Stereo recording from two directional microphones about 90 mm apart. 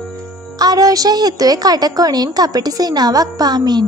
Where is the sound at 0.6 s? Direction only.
40° right (ahead or behind).